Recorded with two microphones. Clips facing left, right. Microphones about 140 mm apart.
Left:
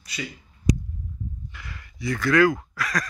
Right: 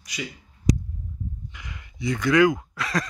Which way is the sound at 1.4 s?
15° right (ahead or behind).